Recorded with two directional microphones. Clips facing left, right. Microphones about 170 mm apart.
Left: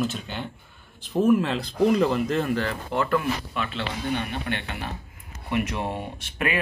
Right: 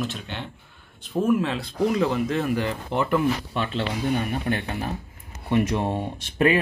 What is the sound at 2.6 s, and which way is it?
Speech, 20° right (ahead or behind).